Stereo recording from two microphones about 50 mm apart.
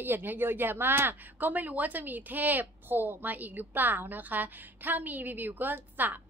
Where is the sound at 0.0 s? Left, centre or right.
Right.